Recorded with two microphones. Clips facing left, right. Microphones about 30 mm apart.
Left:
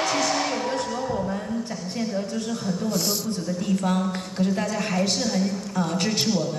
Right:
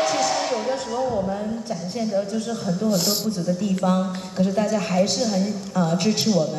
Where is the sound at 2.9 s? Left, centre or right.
Right.